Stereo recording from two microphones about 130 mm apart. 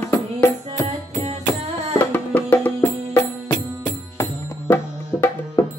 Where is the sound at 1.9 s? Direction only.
15° left (ahead or behind).